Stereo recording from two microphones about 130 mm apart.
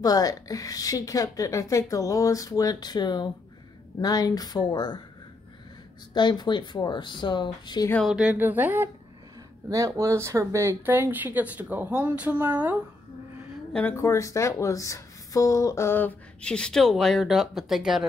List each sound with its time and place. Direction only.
0.0 s a woman's voice: 30° left (ahead or behind)
6.1 s speech: 35° left (ahead or behind)
7.9 s speech: centre (ahead or behind); by 8.9 s 15° right (ahead or behind)
9.7 s speech: 25° right (ahead or behind)
13.7 s speech: 20° left (ahead or behind); by 18.0 s 5° right (ahead or behind)